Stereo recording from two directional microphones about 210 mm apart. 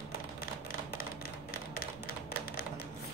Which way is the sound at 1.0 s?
45° left (ahead or behind).